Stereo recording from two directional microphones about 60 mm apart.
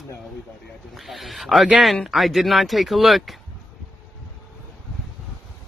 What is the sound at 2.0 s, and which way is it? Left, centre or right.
Speech, centre.